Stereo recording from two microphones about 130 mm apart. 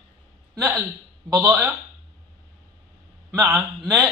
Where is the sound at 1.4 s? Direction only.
10° right (ahead or behind).